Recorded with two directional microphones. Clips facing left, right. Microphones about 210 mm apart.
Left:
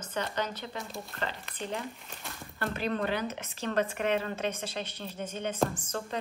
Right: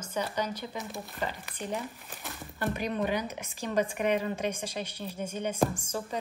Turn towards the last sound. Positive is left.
turn(degrees=-10)  # may be behind; listen again after turning